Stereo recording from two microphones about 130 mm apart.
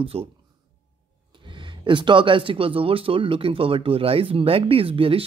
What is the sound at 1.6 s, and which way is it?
Speech, 40° right (ahead or behind).